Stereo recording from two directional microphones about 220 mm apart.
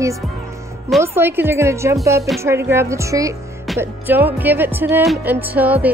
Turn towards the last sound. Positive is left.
turn(degrees=-5)  # may be behind; listen again after turning